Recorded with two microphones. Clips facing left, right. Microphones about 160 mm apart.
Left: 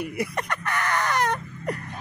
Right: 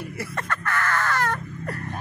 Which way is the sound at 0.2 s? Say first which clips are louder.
Right 1 dB; 15° left (ahead or behind).